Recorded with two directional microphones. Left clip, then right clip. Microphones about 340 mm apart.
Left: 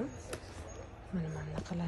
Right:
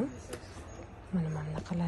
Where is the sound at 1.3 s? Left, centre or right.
Centre.